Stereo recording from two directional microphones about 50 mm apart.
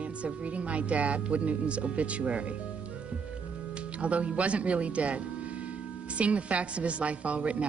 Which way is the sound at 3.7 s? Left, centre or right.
Right.